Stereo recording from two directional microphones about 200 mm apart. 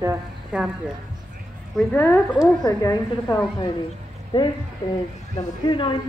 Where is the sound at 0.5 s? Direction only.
5° right (ahead or behind).